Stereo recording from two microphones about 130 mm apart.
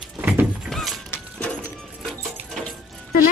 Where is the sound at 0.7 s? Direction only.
5° left (ahead or behind).